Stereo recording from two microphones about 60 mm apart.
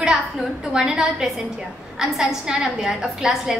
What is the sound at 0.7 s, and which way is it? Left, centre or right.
A woman's voice, centre.